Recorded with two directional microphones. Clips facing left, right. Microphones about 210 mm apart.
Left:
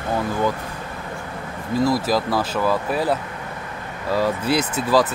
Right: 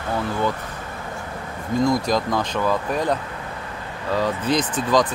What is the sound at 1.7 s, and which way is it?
Speech, 5° left (ahead or behind).